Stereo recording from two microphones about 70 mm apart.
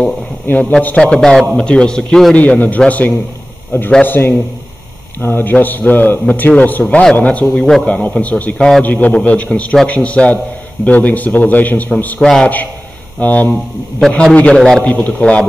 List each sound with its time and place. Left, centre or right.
0.5 s a man's voice: left
2.3 s a man's voice: left
7.4 s a man's voice: centre
7.8 s a man's voice: left
12.2 s a man's voice: centre
13.2 s a man's voice: left